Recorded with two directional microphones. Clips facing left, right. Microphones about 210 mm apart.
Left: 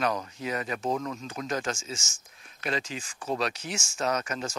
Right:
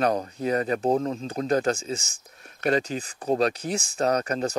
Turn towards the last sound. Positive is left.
turn(degrees=-35)  # may be behind; listen again after turning